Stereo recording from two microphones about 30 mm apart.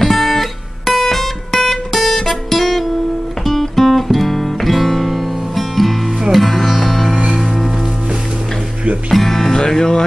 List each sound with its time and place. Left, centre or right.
0.0 s guitar: centre
3.4 s music: centre
6.3 s sitar: centre
7.4 s music: centre
9.1 s music: centre
9.5 s music: centre